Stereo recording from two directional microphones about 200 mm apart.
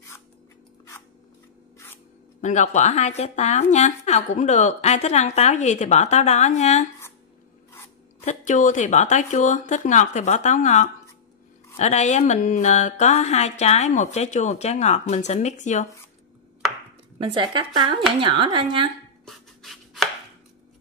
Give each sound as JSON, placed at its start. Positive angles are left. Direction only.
{"t": 2.4, "sound": "speech", "side_deg": 35}
{"t": 8.3, "sound": "speech", "side_deg": 40}
{"t": 17.2, "sound": "speech", "side_deg": -25}
{"t": 19.2, "sound": "chopping", "side_deg": 0}